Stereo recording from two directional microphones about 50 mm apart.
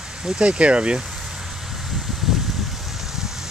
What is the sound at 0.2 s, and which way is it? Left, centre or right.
Speech, centre.